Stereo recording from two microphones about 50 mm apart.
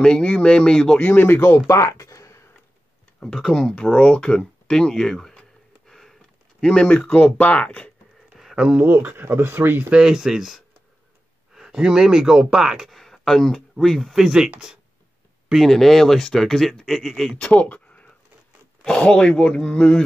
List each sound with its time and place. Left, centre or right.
0.0 s speech: centre
0.9 s speech: left
1.7 s a sound: left
3.4 s speech: centre
3.8 s speech: centre
5.9 s a sound: centre
6.7 s speech: left
8.3 s a sound: centre
8.8 s speech: right
10.0 s speech: centre
12.9 s speech: centre
15.5 s speech: centre
17.4 s speech: left